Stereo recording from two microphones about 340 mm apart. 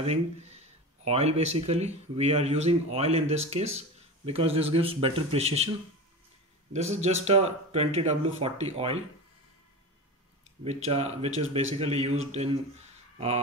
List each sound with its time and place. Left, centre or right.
0.0 s speech: centre
6.7 s speech: centre
10.6 s speech: centre